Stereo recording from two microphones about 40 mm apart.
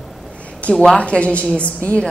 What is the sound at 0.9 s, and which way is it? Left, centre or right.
A woman's voice, left.